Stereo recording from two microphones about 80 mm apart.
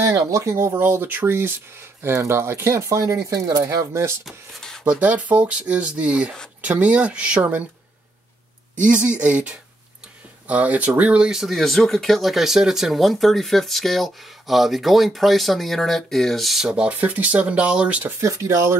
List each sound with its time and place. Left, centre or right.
0.1 s speech: right
4.6 s a sound: centre
4.8 s speech: centre
8.8 s speech: centre
18.2 s speech: right